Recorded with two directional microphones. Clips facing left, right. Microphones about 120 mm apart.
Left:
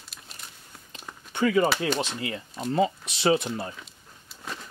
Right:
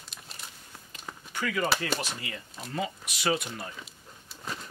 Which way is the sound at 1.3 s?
25° left (ahead or behind).